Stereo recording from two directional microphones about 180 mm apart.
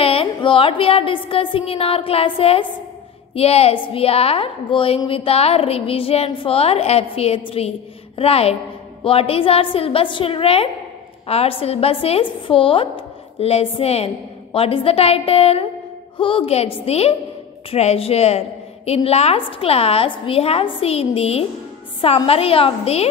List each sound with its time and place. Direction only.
0.0 s a woman's voice: 30° left (ahead or behind)